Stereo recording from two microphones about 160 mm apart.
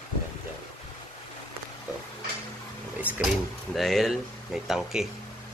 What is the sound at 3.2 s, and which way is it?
Speech, centre (ahead or behind).